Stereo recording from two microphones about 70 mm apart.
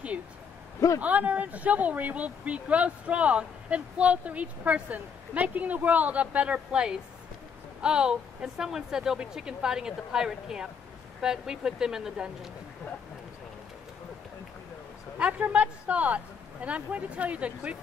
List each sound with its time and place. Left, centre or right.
0.7 s a man's voice: left
1.0 s a woman's voice: right
15.1 s speech: centre